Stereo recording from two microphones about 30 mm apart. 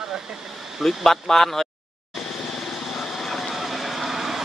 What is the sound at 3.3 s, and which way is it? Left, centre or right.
Vehicle, centre.